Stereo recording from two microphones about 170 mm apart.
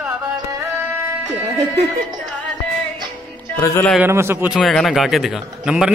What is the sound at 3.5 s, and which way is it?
Speech, 20° left (ahead or behind).